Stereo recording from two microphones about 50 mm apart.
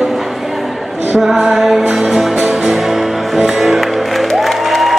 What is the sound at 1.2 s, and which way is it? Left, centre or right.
Music, centre.